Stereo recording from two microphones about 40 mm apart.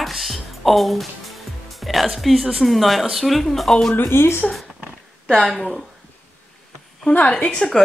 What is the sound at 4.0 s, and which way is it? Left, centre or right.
Speech, left.